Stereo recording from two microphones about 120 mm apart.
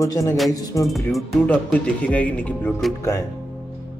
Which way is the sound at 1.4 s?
10° left (ahead or behind).